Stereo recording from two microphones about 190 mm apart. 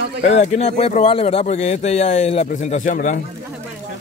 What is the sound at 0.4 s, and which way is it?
Speech, 35° left (ahead or behind).